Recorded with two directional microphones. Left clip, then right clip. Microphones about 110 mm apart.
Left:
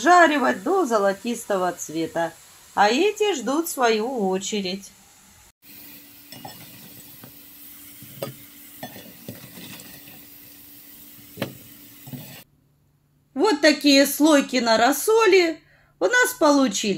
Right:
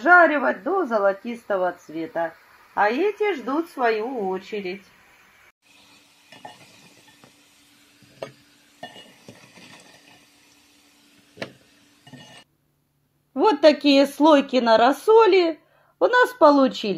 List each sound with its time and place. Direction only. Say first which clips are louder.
0.0 s speech: even; centre (ahead or behind)
8.9 s a sound: left 3 dB; 15° left (ahead or behind)
13.3 s speech: right 2 dB; 40° right (ahead or behind)